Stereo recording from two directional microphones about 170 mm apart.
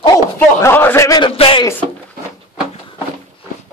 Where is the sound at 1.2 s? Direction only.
30° left (ahead or behind).